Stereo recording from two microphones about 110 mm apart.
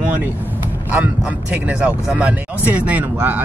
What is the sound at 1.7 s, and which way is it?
Speech, 10° right (ahead or behind).